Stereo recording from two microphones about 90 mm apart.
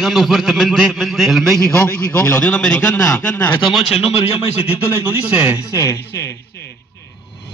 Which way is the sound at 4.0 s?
90° left.